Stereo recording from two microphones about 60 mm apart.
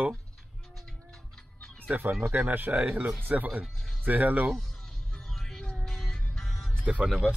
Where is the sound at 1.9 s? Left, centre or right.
Right.